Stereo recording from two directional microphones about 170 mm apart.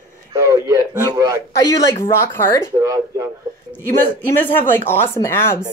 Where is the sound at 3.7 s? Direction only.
10° left (ahead or behind).